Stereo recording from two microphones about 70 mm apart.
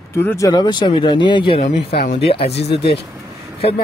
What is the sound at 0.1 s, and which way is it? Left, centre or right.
Speech, left.